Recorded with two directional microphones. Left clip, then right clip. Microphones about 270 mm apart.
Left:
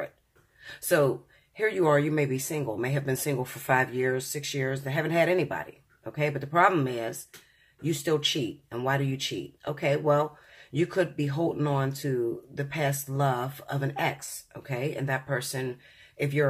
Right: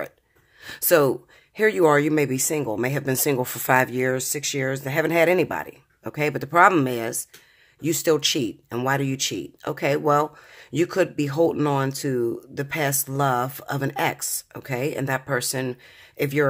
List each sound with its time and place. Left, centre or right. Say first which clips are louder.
0.6 s speech: right 6 dB; right